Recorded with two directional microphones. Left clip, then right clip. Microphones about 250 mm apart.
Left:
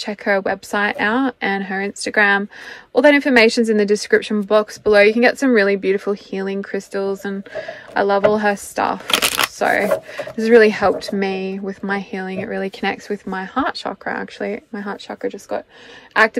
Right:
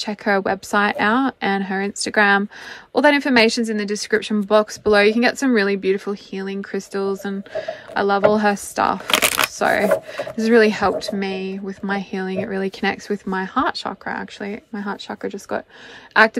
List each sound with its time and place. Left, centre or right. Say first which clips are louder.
0.0 s a woman's voice: left 1 dB; centre